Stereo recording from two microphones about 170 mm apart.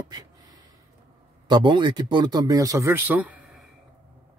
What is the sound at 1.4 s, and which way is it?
Speech, 25° right (ahead or behind).